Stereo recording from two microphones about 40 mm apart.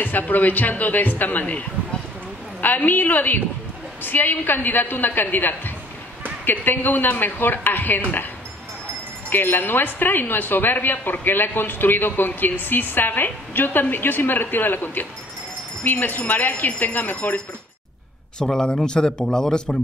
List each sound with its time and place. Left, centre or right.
0.0 s speech: left
2.6 s a woman's voice: left
8.0 s speech: left
9.3 s a woman's voice: left
18.4 s speech: centre